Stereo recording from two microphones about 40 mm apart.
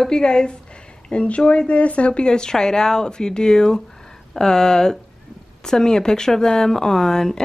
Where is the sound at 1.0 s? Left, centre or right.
Left.